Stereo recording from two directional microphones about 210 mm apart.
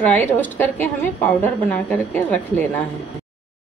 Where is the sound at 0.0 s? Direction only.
10° left (ahead or behind).